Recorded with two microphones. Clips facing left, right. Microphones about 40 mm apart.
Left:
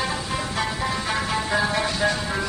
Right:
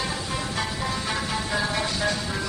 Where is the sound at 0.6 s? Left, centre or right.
Left.